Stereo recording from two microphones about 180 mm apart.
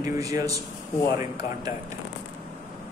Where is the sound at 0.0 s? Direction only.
20° right (ahead or behind).